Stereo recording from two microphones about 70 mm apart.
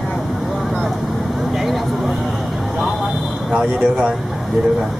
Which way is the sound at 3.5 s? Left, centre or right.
Centre.